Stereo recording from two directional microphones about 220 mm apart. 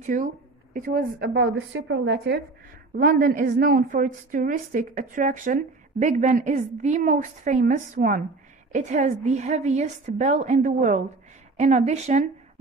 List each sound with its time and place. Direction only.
0.0 s a woman's voice: 35° right (ahead or behind); by 2.4 s 50° right (ahead or behind)
3.0 s a woman's voice: 40° right (ahead or behind)